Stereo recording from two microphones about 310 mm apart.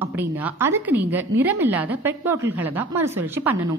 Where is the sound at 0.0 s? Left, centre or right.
Centre.